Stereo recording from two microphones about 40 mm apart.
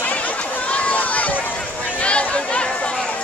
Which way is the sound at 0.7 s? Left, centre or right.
Left.